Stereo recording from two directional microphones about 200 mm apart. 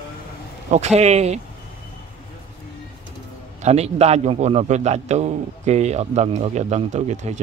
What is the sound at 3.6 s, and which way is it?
A man's voice, 35° right (ahead or behind).